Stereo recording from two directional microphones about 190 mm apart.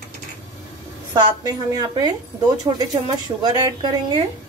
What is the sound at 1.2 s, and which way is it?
Speech, 20° right (ahead or behind).